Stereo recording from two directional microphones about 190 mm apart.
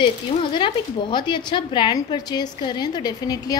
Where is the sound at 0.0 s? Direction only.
25° left (ahead or behind).